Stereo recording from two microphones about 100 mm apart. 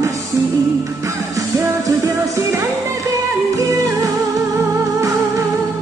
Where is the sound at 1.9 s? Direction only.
35° right (ahead or behind).